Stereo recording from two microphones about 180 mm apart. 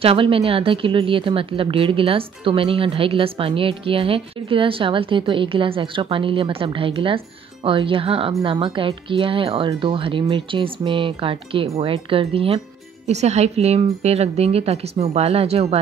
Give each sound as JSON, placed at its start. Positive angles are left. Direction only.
{"t": 0.0, "sound": "speech", "side_deg": -30}